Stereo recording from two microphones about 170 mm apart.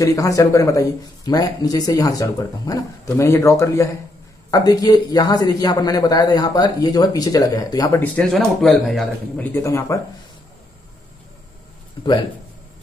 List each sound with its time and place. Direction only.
0.0 s speech: 20° left (ahead or behind)
8.0 s speech: 5° left (ahead or behind)
9.5 s speech: 15° left (ahead or behind)